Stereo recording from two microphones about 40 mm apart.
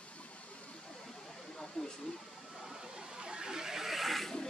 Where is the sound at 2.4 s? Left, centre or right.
Centre.